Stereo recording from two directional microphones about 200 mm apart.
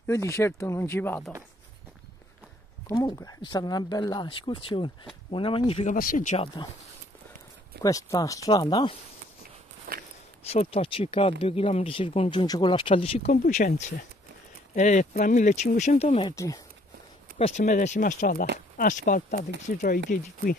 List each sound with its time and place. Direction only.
0.0 s speech: 15° left (ahead or behind)
2.9 s speech: 20° left (ahead or behind)
5.9 s speech: 40° left (ahead or behind); by 6.7 s 25° left (ahead or behind)
7.8 s speech: 15° left (ahead or behind)
9.9 s a sound: 50° right (ahead or behind)
10.5 s speech: 30° left (ahead or behind)
14.8 s speech: 35° left (ahead or behind); by 16.6 s 15° left (ahead or behind)
17.4 s speech: 35° left (ahead or behind)